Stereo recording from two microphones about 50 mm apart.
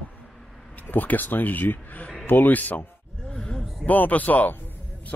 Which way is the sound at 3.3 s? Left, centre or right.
Centre.